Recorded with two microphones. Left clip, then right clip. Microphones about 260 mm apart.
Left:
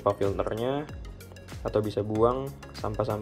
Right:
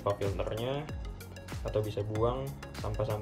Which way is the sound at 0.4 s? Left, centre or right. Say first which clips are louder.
Left 6 dB; left.